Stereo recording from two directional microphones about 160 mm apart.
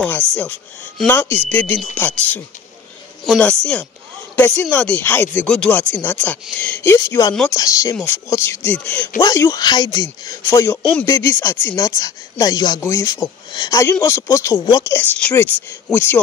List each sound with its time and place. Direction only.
0.4 s speech: 10° left (ahead or behind)
9.2 s speech: 20° left (ahead or behind)